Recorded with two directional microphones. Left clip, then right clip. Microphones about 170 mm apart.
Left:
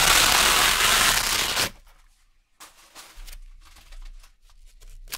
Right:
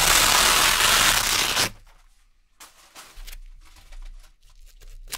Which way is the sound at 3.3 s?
35° right (ahead or behind).